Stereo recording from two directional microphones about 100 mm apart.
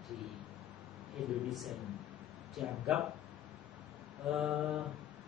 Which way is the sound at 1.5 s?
Centre (ahead or behind).